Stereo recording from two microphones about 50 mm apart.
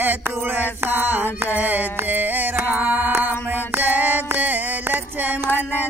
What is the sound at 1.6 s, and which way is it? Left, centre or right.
Music, right.